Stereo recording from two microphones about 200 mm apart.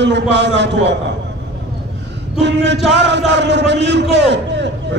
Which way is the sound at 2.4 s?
60° right (ahead or behind).